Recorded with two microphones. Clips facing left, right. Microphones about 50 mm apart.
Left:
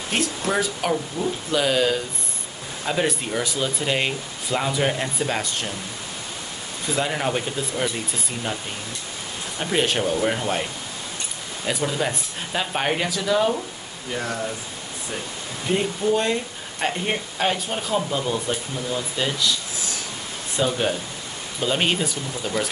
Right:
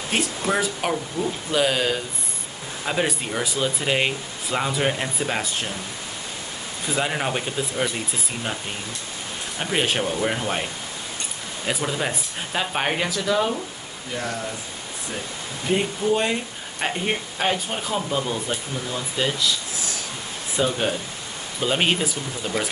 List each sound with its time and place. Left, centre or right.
0.1 s speech: centre
1.2 s speech: right
1.5 s speech: centre
7.0 s speech: centre
9.6 s speech: centre
11.6 s speech: centre
15.7 s speech: centre
20.5 s speech: centre